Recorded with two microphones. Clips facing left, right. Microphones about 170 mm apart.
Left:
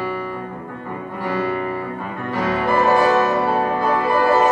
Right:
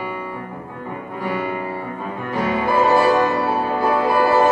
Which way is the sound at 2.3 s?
15° right (ahead or behind).